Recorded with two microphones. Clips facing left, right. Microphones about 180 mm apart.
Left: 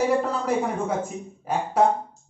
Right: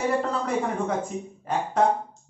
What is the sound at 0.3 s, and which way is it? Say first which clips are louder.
Speech: left 2 dB; 10° left (ahead or behind).